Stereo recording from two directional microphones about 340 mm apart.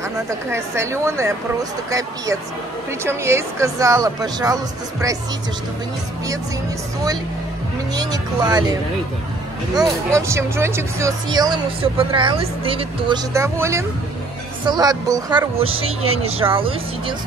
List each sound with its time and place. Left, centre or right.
0.3 s speech: centre
7.9 s speech: centre
9.8 s speech: centre
15.8 s speech: right
16.2 s speech: centre